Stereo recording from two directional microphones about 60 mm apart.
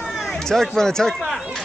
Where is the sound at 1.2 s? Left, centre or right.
Centre.